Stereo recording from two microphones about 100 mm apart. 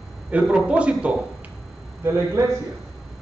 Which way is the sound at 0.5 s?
10° right (ahead or behind).